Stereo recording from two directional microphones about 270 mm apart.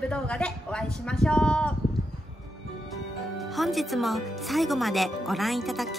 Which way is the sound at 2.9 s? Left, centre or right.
Centre.